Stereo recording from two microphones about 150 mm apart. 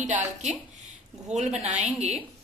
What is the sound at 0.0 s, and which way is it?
A woman's voice, 50° right (ahead or behind).